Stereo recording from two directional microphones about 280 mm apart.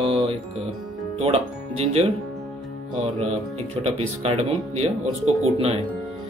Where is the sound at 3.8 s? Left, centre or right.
Right.